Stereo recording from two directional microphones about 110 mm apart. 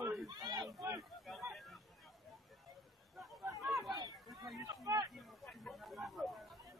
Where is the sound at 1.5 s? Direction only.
Centre (ahead or behind).